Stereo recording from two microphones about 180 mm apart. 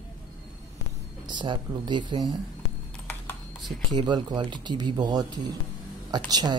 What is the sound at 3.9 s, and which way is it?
Speech, 25° right (ahead or behind).